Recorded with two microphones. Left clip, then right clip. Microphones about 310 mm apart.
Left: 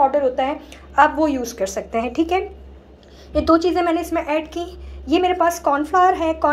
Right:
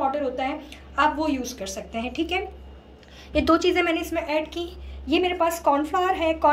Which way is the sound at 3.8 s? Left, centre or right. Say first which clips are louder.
Left 5 dB; centre.